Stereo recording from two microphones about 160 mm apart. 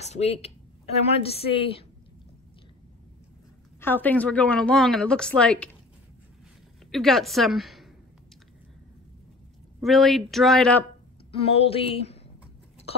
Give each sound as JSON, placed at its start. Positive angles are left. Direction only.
{"t": 0.0, "sound": "a woman's voice", "side_deg": 40}
{"t": 3.8, "sound": "a woman's voice", "side_deg": 10}
{"t": 6.9, "sound": "a woman's voice", "side_deg": 0}
{"t": 9.8, "sound": "a man's voice", "side_deg": 0}
{"t": 11.4, "sound": "a woman's voice", "side_deg": 40}